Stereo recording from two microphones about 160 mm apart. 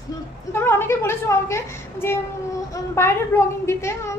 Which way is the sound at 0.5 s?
15° left (ahead or behind).